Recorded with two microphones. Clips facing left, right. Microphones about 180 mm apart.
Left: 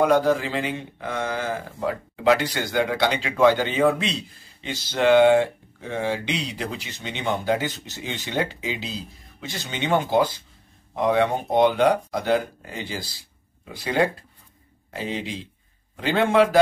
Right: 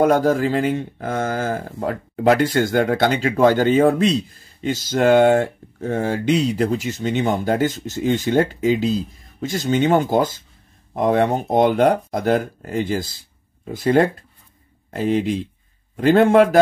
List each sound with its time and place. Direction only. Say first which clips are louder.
0.0 s speech: right 3 dB; 45° right (ahead or behind)